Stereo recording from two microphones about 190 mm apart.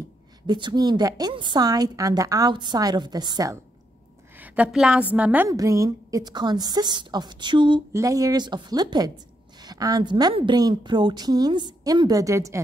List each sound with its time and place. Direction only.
0.5 s a woman's voice: 25° right (ahead or behind)
4.4 s a woman's voice: 5° right (ahead or behind)